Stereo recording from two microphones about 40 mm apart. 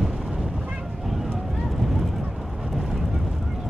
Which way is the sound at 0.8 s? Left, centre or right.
Centre.